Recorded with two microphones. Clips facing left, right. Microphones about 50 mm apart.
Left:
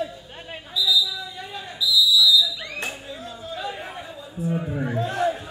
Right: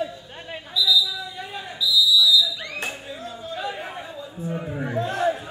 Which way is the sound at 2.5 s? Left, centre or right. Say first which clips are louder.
Right 1 dB; right.